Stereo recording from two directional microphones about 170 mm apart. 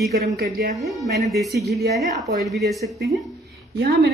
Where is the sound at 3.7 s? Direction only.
75° right (ahead or behind).